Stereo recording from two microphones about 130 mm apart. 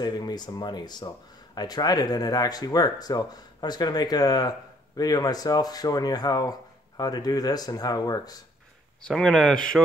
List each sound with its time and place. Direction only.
0.0 s speech: 30° left (ahead or behind)
9.0 s speech: 5° left (ahead or behind)